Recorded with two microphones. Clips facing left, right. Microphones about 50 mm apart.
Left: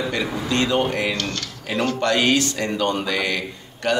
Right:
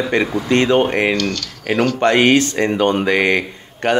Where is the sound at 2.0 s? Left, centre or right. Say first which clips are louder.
Right 6 dB; right.